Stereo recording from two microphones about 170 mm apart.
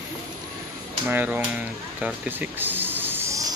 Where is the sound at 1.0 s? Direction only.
10° right (ahead or behind).